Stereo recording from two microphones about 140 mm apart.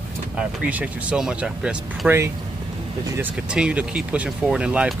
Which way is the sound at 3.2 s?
10° right (ahead or behind).